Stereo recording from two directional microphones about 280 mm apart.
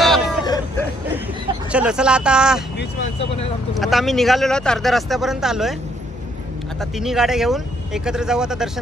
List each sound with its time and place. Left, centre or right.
0.0 s vehicle: centre
1.7 s speech: centre
3.8 s speech: centre
6.8 s speech: centre